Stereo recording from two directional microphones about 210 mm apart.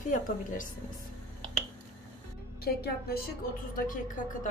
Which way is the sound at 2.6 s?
50° left (ahead or behind).